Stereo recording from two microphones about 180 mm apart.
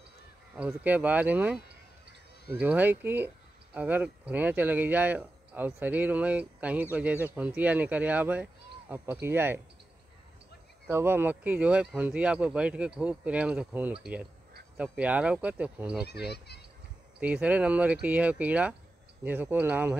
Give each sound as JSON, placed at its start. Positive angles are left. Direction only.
{"t": 0.6, "sound": "speech", "side_deg": -10}
{"t": 10.9, "sound": "speech", "side_deg": -15}
{"t": 16.1, "sound": "speech", "side_deg": 65}
{"t": 17.2, "sound": "speech", "side_deg": -5}